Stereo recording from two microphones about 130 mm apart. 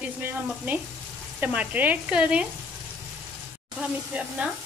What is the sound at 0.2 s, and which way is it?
Sizzle, 15° right (ahead or behind).